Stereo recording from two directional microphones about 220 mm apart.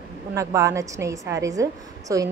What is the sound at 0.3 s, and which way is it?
A woman's voice, 15° right (ahead or behind).